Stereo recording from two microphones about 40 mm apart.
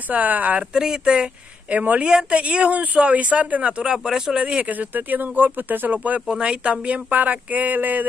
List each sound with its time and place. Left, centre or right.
0.1 s speech: right
0.8 s speech: right
4.6 s speech: right